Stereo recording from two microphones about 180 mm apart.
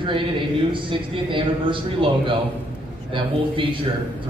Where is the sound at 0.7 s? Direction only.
25° right (ahead or behind).